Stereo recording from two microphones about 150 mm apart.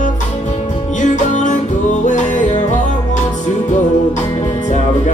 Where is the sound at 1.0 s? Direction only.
55° left (ahead or behind).